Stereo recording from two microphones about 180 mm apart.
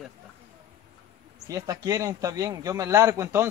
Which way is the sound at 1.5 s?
15° right (ahead or behind).